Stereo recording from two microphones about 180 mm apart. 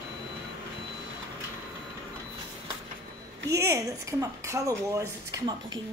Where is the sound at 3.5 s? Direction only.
15° right (ahead or behind).